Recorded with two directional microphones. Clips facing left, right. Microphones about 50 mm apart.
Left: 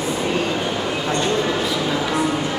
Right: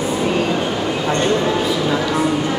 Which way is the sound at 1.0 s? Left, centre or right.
Right.